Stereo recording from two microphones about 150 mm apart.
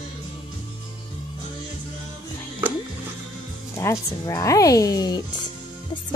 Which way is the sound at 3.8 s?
20° left (ahead or behind).